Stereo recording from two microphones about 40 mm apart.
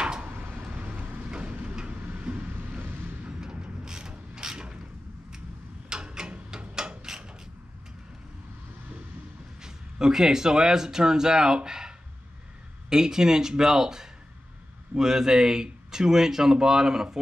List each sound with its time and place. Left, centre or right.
0.0 s a sound: right
0.3 s a sound: right
0.7 s vehicle: right
1.3 s vehicle: right
2.8 s vehicle: right
3.3 s mechanisms: right
5.9 s a sound: centre
9.6 s speech: centre
12.9 s speech: centre